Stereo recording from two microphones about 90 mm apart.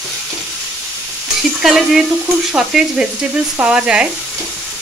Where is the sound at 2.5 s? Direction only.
5° right (ahead or behind).